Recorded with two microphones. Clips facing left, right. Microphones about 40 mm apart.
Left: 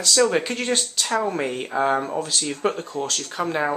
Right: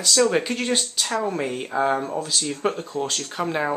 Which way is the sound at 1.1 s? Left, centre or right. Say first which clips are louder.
Left 2 dB; centre.